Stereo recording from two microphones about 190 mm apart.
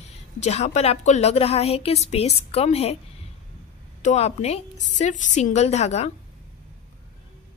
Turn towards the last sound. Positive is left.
turn(degrees=35)  # may be behind; listen again after turning